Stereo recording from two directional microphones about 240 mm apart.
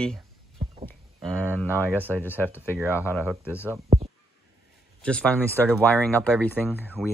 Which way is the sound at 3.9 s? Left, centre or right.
Right.